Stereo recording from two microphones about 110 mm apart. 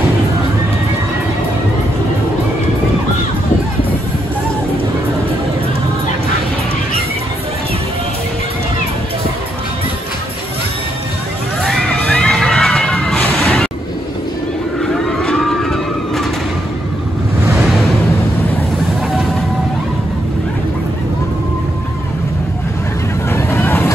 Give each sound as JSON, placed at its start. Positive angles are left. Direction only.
{"t": 11.6, "sound": "crowd", "side_deg": 5}
{"t": 15.0, "sound": "a sound", "side_deg": 5}
{"t": 23.3, "sound": "vehicle", "side_deg": 20}